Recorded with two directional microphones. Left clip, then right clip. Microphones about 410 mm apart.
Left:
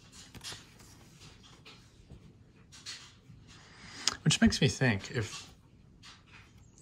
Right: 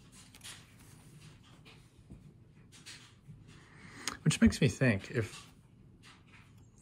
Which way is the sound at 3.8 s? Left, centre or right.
Centre.